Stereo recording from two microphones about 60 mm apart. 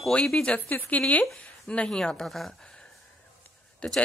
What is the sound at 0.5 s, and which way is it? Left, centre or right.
Speech, left.